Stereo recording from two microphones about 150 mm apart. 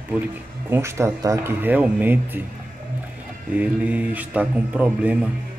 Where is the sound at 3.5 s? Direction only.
10° right (ahead or behind).